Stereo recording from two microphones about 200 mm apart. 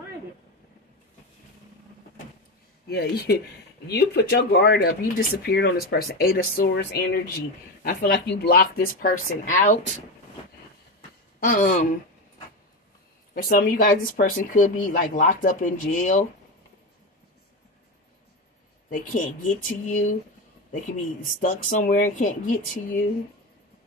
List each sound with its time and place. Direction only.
2.9 s speech: 55° left (ahead or behind); by 9.9 s 40° left (ahead or behind)
11.0 s a sound: 45° left (ahead or behind)
13.3 s speech: 45° left (ahead or behind)
18.9 s speech: 40° left (ahead or behind)